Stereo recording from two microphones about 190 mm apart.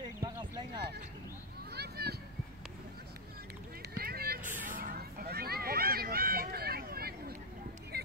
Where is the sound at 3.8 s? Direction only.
55° right (ahead or behind).